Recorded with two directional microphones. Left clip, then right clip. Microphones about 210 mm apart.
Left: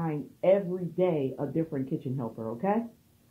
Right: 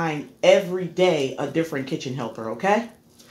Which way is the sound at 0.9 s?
25° left (ahead or behind).